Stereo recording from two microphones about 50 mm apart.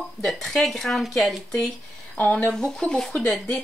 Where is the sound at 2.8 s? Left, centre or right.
Centre.